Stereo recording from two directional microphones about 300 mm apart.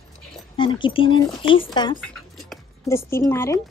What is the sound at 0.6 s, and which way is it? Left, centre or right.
Speech, centre.